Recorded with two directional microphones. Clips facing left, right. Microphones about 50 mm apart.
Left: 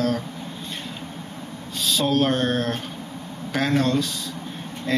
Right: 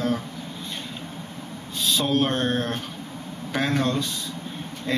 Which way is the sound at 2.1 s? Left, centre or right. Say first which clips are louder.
Left 3 dB; centre.